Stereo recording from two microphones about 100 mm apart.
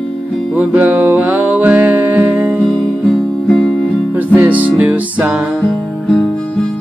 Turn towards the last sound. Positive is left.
turn(degrees=-15)  # may be behind; listen again after turning